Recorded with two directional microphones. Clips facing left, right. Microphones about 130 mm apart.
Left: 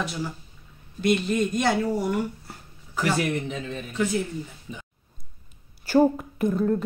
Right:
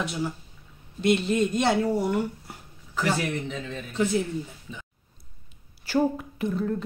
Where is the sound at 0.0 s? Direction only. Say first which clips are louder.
Right 1 dB; 20° right (ahead or behind).